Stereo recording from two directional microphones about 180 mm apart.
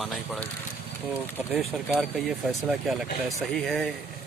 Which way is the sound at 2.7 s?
Centre (ahead or behind).